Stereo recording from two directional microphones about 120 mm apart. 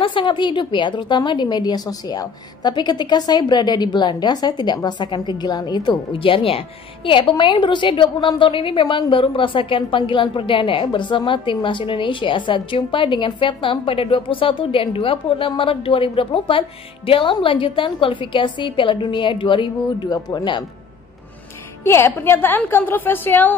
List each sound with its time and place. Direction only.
0.0 s a woman's voice: 45° left (ahead or behind)
21.8 s a woman's voice: 20° left (ahead or behind)